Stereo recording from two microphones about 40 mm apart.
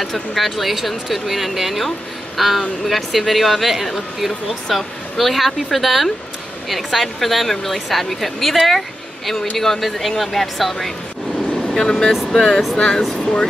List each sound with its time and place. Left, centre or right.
0.0 s speech: centre
11.8 s speech: centre